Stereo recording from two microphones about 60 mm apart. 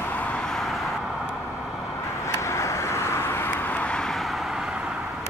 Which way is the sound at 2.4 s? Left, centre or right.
Left.